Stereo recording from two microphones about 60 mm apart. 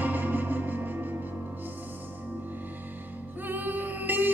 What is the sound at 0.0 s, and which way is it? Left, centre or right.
Music, right.